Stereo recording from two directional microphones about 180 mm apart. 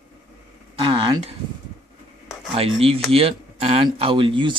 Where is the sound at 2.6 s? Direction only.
30° right (ahead or behind).